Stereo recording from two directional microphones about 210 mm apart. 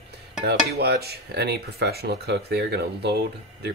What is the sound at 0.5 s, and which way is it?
Speech, 50° right (ahead or behind).